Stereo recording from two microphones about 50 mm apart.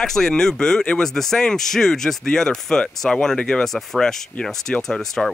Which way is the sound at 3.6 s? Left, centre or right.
Centre.